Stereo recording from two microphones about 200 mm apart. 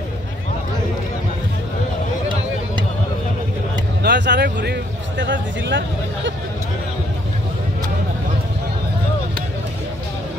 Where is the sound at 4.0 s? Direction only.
60° right (ahead or behind).